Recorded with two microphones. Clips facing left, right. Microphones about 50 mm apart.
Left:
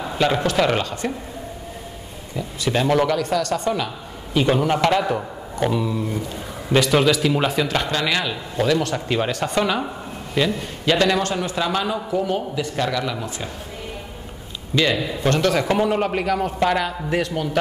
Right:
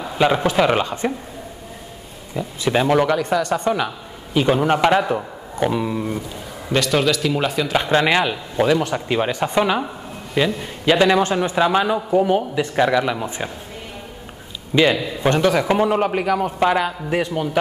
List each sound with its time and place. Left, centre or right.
0.2 s a man's voice: centre
2.6 s a man's voice: centre
5.8 s a man's voice: right
6.7 s speech: centre
7.9 s a man's voice: right
14.8 s a man's voice: centre